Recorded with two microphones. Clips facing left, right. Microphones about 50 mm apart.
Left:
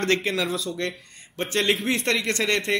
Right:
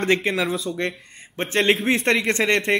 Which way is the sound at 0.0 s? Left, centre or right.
Centre.